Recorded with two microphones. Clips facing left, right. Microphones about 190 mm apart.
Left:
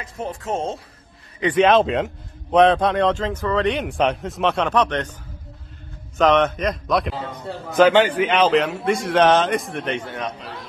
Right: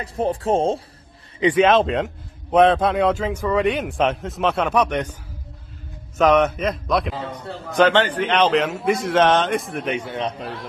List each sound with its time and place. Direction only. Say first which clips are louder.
0.0 s speech: right 7 dB; 35° right (ahead or behind)
1.5 s a man's voice: left 1 dB; centre (ahead or behind)
6.1 s a man's voice: right 1 dB; 10° right (ahead or behind)